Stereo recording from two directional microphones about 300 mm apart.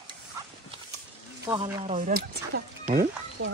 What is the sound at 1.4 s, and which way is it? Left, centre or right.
Speech, centre.